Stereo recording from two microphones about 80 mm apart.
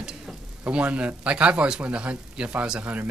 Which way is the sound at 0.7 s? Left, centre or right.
Centre.